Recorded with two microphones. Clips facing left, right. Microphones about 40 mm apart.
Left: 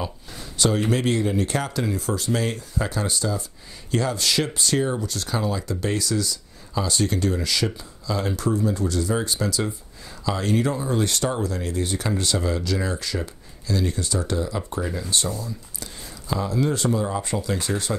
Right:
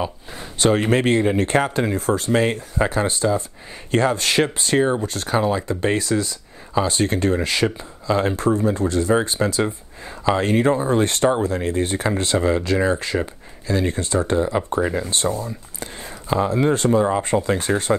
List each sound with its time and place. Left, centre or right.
0.4 s speech: right